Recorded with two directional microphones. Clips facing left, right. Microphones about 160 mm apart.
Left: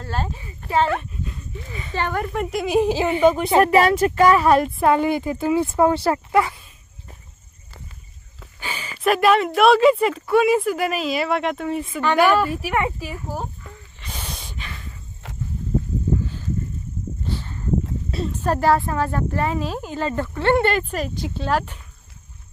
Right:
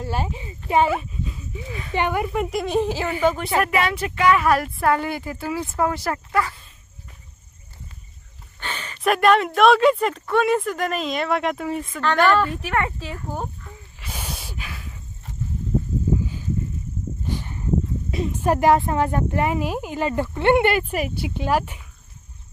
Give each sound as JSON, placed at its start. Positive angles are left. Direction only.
{"t": 0.0, "sound": "speech", "side_deg": -15}
{"t": 2.0, "sound": "speech", "side_deg": -10}
{"t": 3.6, "sound": "speech", "side_deg": 40}
{"t": 4.5, "sound": "speech", "side_deg": 25}
{"t": 8.5, "sound": "speech", "side_deg": 10}
{"t": 13.9, "sound": "a sound", "side_deg": -10}
{"t": 15.2, "sound": "a sound", "side_deg": 90}
{"t": 17.3, "sound": "a sound", "side_deg": -15}
{"t": 18.1, "sound": "speech", "side_deg": -15}